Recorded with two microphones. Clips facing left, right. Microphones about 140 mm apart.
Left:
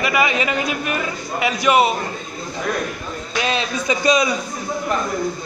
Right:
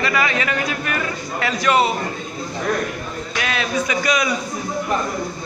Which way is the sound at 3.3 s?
25° left (ahead or behind).